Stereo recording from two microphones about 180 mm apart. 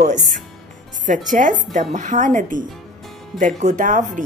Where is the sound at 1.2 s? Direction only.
45° right (ahead or behind).